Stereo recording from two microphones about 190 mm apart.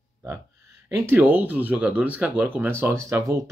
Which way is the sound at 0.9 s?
10° right (ahead or behind).